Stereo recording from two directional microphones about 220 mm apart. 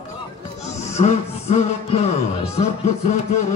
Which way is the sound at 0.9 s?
30° left (ahead or behind).